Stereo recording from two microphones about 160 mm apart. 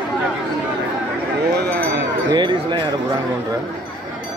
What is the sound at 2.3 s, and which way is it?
Speech, 30° right (ahead or behind).